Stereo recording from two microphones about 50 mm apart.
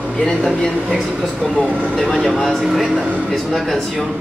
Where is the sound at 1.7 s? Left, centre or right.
Right.